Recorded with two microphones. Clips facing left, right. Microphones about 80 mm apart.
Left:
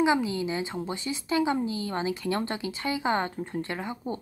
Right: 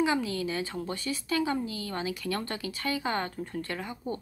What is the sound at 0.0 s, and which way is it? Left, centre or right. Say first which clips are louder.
A woman's voice: left 3 dB; left.